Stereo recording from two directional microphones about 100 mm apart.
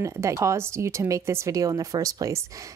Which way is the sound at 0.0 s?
30° right (ahead or behind).